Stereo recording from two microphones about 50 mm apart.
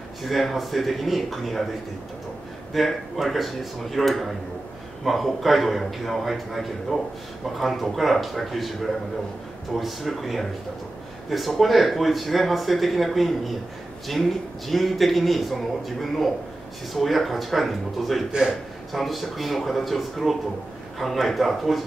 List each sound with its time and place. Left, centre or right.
0.2 s speech: centre
2.7 s speech: centre
9.8 s speech: centre